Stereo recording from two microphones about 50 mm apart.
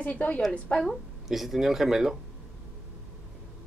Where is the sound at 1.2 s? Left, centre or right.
Centre.